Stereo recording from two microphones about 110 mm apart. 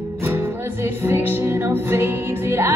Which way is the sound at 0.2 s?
20° right (ahead or behind).